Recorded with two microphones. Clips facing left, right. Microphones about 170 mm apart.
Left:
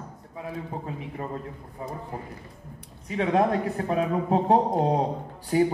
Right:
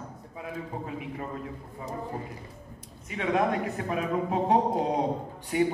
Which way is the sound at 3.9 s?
35° left (ahead or behind).